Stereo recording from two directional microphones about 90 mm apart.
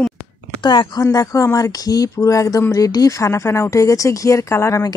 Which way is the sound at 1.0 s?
40° left (ahead or behind).